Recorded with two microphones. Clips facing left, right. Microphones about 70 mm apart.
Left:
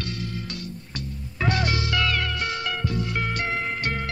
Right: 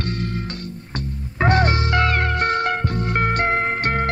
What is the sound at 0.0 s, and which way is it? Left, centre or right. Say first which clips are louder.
Music: right 6 dB; right.